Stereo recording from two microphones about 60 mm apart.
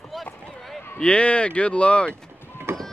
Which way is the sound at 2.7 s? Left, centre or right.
Right.